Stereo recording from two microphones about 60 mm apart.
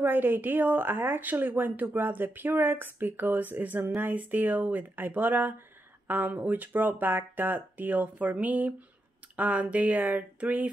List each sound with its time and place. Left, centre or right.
0.0 s speech: right